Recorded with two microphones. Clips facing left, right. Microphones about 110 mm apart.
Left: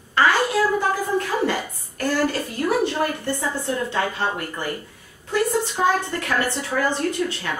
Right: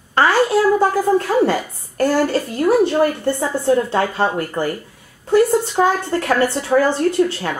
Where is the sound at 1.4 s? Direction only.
35° right (ahead or behind).